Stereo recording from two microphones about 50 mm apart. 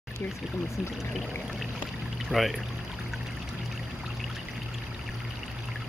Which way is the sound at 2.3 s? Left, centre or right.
Right.